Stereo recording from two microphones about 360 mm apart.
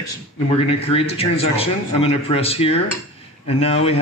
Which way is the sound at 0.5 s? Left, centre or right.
Centre.